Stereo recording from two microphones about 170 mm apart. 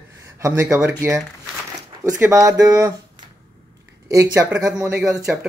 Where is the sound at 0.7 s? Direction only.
15° right (ahead or behind).